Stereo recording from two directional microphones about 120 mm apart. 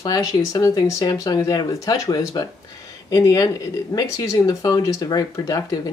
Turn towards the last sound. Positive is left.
turn(degrees=30)  # may be behind; listen again after turning